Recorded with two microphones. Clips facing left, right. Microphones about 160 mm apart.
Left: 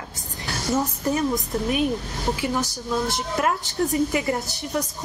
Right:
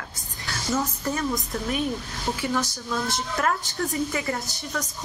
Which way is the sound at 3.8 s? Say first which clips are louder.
Left 5 dB; 20° left (ahead or behind).